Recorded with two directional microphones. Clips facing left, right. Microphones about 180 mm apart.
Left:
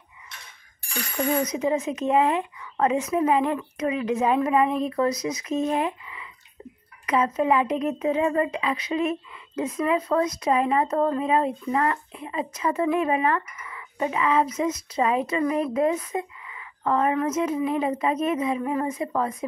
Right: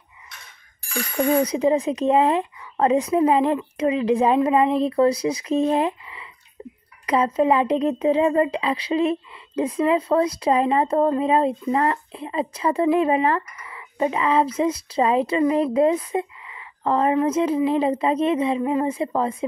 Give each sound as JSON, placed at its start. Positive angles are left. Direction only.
{"t": 1.1, "sound": "speech", "side_deg": -30}